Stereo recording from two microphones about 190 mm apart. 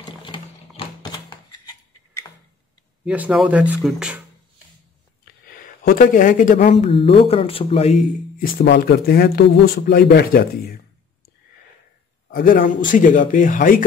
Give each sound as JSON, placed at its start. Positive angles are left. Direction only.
{"t": 0.0, "sound": "a sound", "side_deg": 25}
{"t": 3.1, "sound": "speech", "side_deg": -5}
{"t": 5.5, "sound": "speech", "side_deg": 50}
{"t": 8.4, "sound": "speech", "side_deg": 60}
{"t": 12.3, "sound": "speech", "side_deg": 50}